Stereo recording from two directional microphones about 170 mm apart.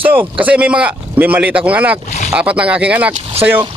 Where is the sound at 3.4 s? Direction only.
35° right (ahead or behind).